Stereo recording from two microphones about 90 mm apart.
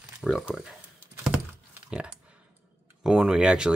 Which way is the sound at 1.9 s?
10° right (ahead or behind).